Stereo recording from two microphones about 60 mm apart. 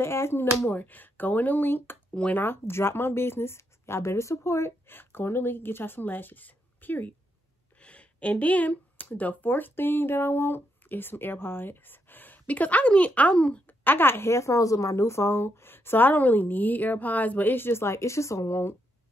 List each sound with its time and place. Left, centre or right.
0.0 s speech: left
0.7 s speech: left
7.8 s speech: centre
13.8 s speech: left